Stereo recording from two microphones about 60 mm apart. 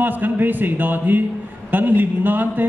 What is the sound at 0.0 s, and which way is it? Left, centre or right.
Speech, right.